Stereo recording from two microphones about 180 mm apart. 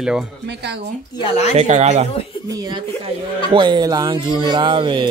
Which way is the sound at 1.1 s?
35° left (ahead or behind).